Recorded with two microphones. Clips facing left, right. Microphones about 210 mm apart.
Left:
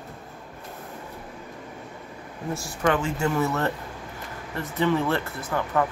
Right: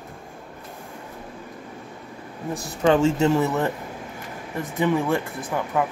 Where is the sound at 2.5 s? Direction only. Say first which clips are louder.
Right 5 dB; 25° right (ahead or behind).